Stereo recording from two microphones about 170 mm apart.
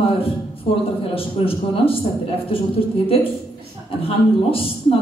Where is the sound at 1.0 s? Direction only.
35° left (ahead or behind).